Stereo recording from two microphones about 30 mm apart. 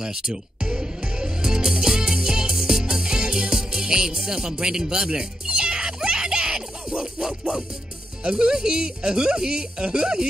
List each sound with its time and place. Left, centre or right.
0.0 s speech: right
2.8 s music: right
8.2 s speech: right